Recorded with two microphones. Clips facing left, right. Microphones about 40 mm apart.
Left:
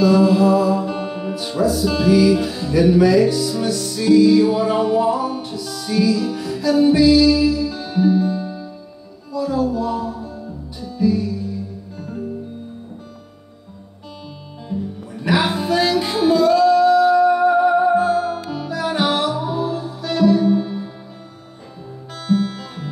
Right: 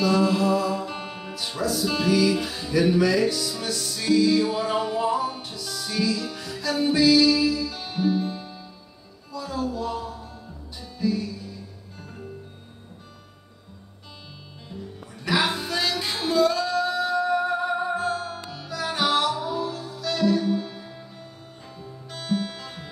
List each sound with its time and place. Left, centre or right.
0.0 s music: centre
9.3 s music: centre
14.7 s music: centre
22.1 s music: centre